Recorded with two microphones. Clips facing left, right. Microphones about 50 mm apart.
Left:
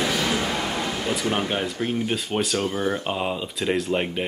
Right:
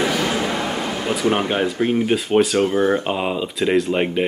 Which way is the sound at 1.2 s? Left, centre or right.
Right.